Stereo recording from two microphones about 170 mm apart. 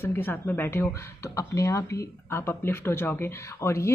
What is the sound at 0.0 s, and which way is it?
Speech, 10° left (ahead or behind).